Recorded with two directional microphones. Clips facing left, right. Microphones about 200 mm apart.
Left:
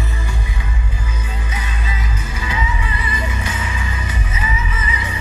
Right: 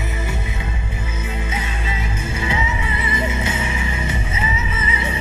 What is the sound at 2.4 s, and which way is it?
Music, 25° right (ahead or behind).